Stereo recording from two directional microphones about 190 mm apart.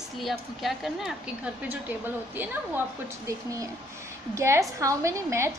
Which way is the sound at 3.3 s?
15° right (ahead or behind).